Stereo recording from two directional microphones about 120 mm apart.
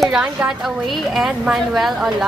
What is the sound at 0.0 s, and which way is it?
A woman's voice, 5° right (ahead or behind).